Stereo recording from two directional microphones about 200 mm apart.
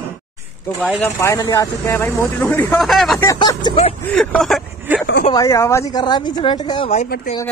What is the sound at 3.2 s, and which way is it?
Speech, 20° left (ahead or behind).